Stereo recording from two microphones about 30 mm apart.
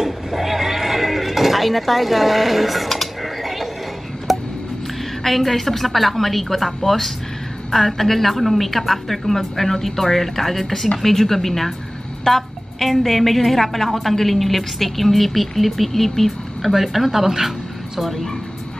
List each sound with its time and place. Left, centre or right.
0.0 s neigh: centre
4.3 s a sound: centre
5.2 s a woman's voice: centre
16.7 s speech: centre
18.0 s a woman's voice: centre